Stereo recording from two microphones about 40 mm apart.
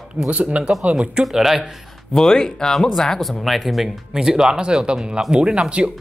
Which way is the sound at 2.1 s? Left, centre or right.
Centre.